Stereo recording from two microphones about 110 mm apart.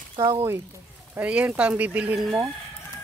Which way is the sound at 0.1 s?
50° right (ahead or behind).